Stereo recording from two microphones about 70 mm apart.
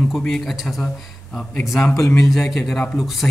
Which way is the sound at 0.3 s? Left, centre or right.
Centre.